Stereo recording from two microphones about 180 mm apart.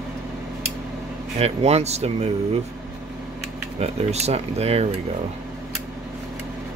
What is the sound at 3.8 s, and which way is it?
Speech, 35° right (ahead or behind).